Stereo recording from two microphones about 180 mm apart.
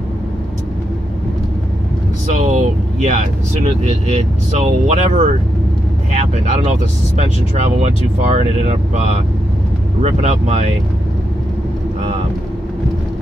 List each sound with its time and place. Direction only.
2.2 s vehicle: 40° right (ahead or behind)
3.8 s speech: 40° right (ahead or behind)
10.0 s speech: 40° right (ahead or behind)